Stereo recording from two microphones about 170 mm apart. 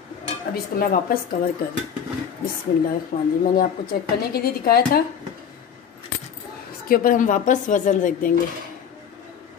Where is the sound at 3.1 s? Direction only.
50° left (ahead or behind).